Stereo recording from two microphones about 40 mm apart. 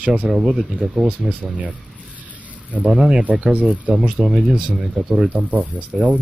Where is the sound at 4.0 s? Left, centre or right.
Right.